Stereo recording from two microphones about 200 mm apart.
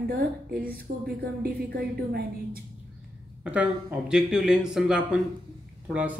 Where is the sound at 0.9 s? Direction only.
50° right (ahead or behind).